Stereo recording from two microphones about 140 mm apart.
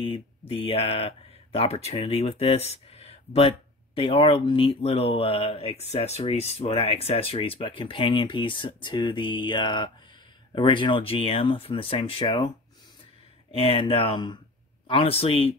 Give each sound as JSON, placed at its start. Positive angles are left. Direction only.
{"t": 0.0, "sound": "speech", "side_deg": 40}
{"t": 13.6, "sound": "speech", "side_deg": 40}